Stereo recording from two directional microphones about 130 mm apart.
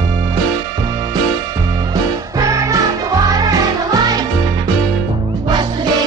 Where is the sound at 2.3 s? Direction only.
25° right (ahead or behind).